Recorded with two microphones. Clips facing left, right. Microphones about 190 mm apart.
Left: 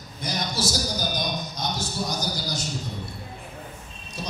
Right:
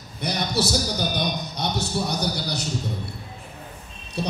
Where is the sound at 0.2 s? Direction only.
65° right (ahead or behind).